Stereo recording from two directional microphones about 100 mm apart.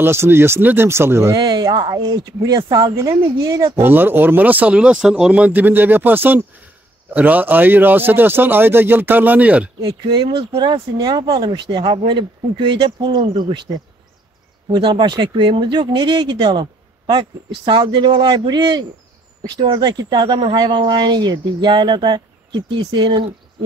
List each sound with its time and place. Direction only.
0.0 s speech: 25° right (ahead or behind)
1.3 s speech: 45° right (ahead or behind)
3.8 s speech: 20° right (ahead or behind)
10.2 s speech: 65° right (ahead or behind)
10.6 s speech: 50° right (ahead or behind)